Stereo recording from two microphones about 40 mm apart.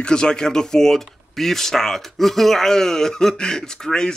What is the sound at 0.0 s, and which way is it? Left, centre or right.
Speech, centre.